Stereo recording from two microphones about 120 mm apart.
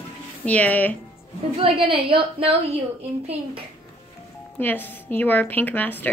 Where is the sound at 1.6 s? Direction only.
50° right (ahead or behind).